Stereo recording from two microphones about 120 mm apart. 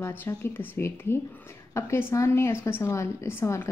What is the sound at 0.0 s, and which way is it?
A woman's voice, 20° left (ahead or behind).